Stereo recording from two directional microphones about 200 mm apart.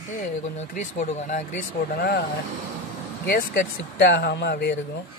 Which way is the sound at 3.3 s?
50° left (ahead or behind).